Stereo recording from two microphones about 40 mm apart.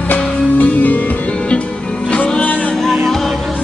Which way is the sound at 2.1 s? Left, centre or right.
Left.